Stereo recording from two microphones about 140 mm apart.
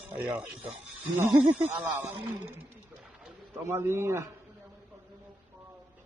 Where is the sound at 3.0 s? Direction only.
Centre (ahead or behind).